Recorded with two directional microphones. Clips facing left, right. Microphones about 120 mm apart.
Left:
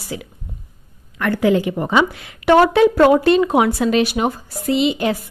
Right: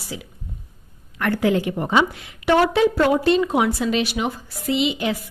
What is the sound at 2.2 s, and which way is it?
A woman's voice, 65° left (ahead or behind).